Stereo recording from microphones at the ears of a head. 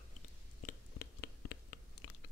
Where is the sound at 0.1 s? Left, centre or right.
Left.